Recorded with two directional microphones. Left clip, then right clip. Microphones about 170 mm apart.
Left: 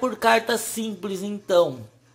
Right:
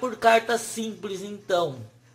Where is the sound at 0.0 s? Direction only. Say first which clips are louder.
Even; 25° left (ahead or behind).